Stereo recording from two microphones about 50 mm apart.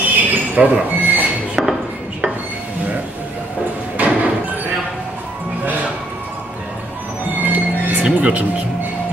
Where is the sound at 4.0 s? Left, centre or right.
Right.